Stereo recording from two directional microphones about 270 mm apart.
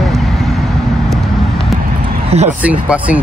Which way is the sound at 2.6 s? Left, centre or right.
Centre.